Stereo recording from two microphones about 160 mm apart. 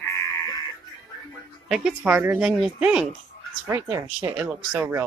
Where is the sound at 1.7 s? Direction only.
5° right (ahead or behind).